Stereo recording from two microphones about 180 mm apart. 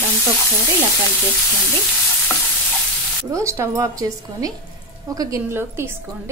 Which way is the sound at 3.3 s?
15° right (ahead or behind).